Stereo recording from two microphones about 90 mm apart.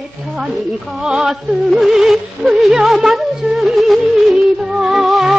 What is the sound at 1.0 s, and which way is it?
Music, 5° right (ahead or behind).